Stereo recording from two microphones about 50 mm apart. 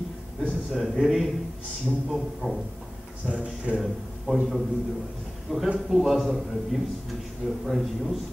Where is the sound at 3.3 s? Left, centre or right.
Centre.